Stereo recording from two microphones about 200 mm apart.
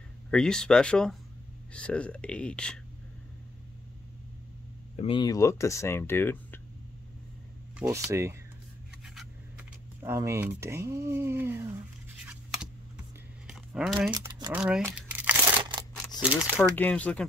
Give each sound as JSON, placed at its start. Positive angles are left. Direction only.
{"t": 0.3, "sound": "speech", "side_deg": 5}
{"t": 4.9, "sound": "speech", "side_deg": 25}
{"t": 8.1, "sound": "speech", "side_deg": -15}
{"t": 9.0, "sound": "vehicle", "side_deg": 0}
{"t": 10.0, "sound": "speech", "side_deg": -15}
{"t": 12.3, "sound": "scratch", "side_deg": -5}
{"t": 13.5, "sound": "a sound", "side_deg": -5}
{"t": 14.1, "sound": "speech", "side_deg": -20}
{"t": 14.5, "sound": "crumpling", "side_deg": -5}
{"t": 16.2, "sound": "speech", "side_deg": -5}
{"t": 16.7, "sound": "speech", "side_deg": 10}